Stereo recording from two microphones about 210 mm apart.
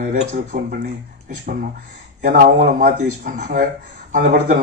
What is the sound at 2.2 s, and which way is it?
A man's voice, 40° right (ahead or behind).